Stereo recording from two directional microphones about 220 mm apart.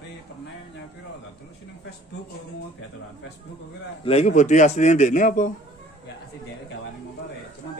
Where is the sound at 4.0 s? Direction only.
30° left (ahead or behind).